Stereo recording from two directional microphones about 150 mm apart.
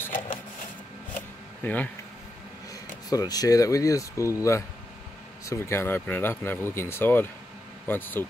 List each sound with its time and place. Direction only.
1.6 s speech: 10° left (ahead or behind)
2.7 s speech: 25° left (ahead or behind)